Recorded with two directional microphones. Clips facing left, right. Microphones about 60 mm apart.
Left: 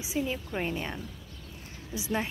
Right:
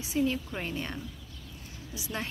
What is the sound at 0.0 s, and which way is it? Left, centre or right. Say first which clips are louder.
A woman's voice: right 3 dB; centre.